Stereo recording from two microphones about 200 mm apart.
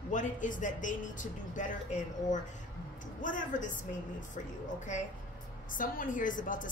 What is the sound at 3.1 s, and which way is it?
Speech, 40° left (ahead or behind).